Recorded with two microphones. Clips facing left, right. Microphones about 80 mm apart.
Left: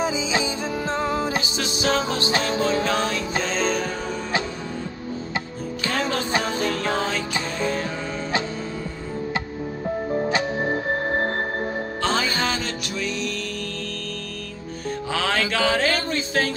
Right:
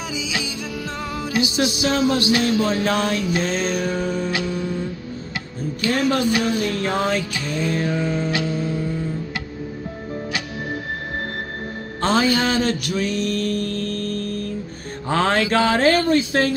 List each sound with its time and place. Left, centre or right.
0.0 s music: left
5.9 s music: left
12.0 s music: right
15.0 s music: right
15.5 s speech: right